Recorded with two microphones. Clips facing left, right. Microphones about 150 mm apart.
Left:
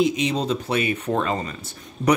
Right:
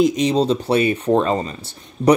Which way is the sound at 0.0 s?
40° right (ahead or behind).